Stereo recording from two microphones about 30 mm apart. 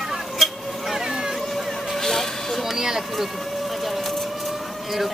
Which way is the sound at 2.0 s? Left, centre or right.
Centre.